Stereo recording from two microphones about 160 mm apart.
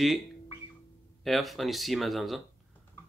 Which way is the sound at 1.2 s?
Centre (ahead or behind).